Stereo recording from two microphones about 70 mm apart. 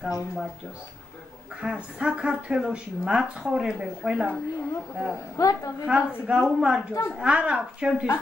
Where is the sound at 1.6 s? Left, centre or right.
Centre.